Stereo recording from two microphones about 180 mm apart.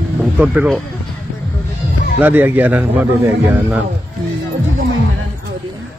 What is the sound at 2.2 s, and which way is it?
Speech, 10° right (ahead or behind).